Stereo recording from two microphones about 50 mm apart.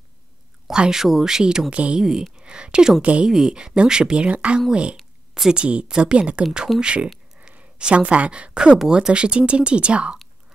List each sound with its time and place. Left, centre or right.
0.7 s speech: centre
3.3 s speech: centre
7.3 s a sound: right
8.7 s speech: centre